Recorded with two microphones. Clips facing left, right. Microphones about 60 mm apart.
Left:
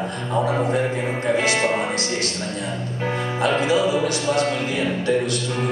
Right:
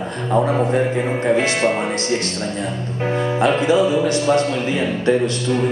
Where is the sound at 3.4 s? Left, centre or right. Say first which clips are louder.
Right 3 dB; right.